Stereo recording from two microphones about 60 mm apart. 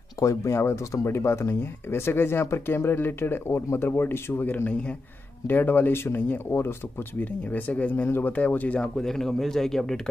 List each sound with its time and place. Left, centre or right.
0.2 s speech: left
8.9 s speech: centre